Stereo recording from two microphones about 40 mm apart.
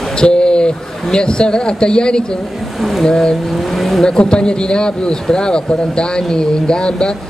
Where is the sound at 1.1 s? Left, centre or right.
Left.